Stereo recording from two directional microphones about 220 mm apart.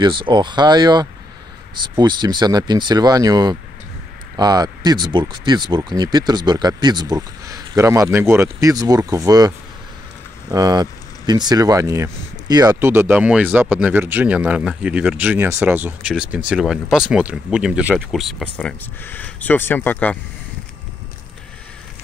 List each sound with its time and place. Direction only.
0.0 s speech: 20° right (ahead or behind)
10.5 s speech: 20° right (ahead or behind); by 20.2 s 10° left (ahead or behind)